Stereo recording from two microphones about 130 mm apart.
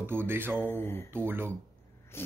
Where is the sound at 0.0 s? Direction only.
15° right (ahead or behind).